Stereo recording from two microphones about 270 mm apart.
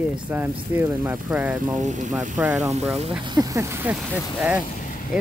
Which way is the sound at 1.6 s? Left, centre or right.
Right.